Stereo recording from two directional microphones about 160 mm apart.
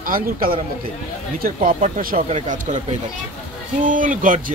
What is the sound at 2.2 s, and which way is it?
Speech, 45° right (ahead or behind).